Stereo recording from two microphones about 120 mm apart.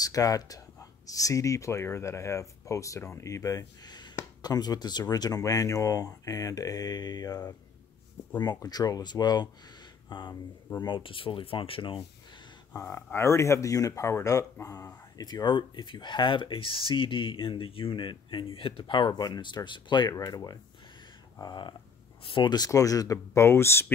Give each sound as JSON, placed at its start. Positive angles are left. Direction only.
{"t": 0.0, "sound": "speech", "side_deg": 30}
{"t": 12.8, "sound": "speech", "side_deg": 20}